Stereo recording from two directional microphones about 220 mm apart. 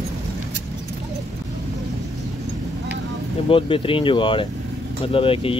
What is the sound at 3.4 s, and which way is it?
Speech, 25° left (ahead or behind).